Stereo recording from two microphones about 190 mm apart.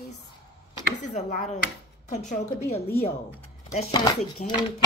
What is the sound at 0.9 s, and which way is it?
A woman's voice, 45° left (ahead or behind).